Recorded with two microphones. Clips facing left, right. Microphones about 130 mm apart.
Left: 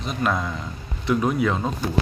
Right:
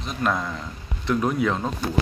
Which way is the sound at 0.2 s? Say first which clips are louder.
Even; centre (ahead or behind).